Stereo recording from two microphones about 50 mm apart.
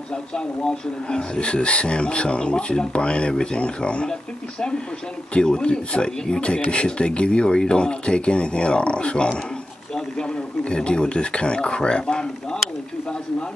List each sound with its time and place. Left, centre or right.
0.1 s speech: centre